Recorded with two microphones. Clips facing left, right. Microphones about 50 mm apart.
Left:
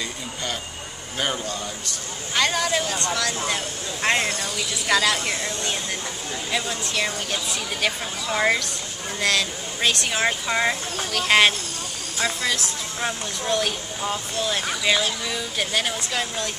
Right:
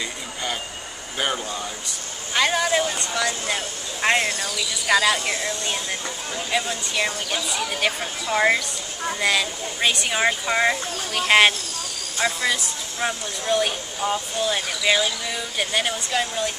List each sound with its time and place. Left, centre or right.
1.1 s speech: centre